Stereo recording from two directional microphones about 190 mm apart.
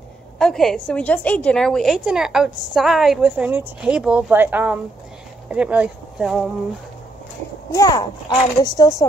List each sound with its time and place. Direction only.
0.4 s a woman's voice: centre (ahead or behind)
7.7 s speech: 20° left (ahead or behind)